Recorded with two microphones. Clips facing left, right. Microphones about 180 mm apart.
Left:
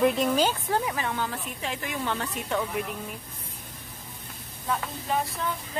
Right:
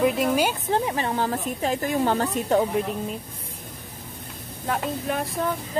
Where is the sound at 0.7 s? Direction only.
25° right (ahead or behind).